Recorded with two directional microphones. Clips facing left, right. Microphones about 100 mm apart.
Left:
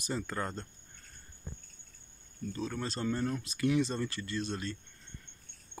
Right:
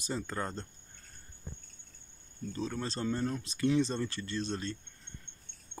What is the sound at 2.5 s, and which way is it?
Speech, 25° right (ahead or behind).